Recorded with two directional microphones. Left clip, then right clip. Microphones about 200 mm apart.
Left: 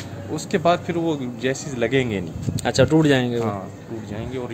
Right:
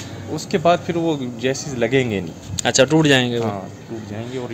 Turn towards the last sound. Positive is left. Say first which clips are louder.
# right 3 dB
turn(degrees=0)  # may be behind; listen again after turning